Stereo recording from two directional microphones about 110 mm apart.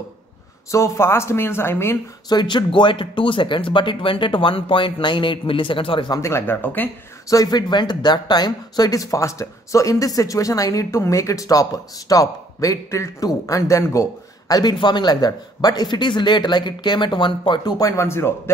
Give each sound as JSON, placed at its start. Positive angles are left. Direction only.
{"t": 0.7, "sound": "speech", "side_deg": 30}
{"t": 2.2, "sound": "speech", "side_deg": 40}
{"t": 6.1, "sound": "speech", "side_deg": 25}
{"t": 7.2, "sound": "speech", "side_deg": 35}
{"t": 14.5, "sound": "speech", "side_deg": 40}
{"t": 17.7, "sound": "speech", "side_deg": 30}